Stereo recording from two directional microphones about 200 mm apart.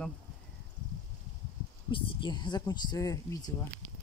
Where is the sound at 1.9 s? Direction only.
25° left (ahead or behind).